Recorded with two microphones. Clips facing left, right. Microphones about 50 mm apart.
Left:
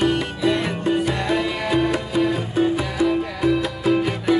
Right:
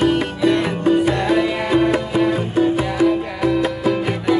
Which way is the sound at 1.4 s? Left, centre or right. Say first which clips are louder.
Right 4 dB; right.